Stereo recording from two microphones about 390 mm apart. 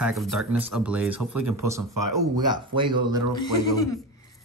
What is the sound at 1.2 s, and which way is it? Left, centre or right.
Speech, right.